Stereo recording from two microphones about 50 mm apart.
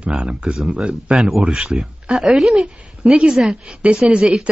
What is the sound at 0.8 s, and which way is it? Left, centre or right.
Speech, centre.